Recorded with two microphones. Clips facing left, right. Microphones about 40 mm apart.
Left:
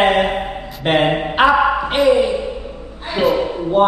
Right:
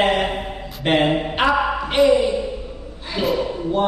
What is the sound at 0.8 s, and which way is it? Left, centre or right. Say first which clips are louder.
Speech: left 2 dB; centre.